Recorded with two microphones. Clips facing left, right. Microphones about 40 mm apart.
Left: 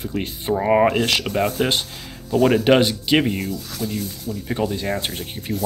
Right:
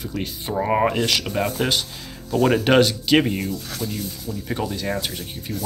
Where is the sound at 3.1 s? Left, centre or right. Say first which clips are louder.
Right 1 dB; centre.